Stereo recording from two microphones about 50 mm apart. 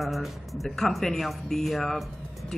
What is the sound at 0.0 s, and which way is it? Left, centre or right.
Speech, centre.